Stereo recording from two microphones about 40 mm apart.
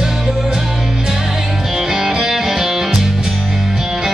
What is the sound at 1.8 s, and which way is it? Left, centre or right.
Music, centre.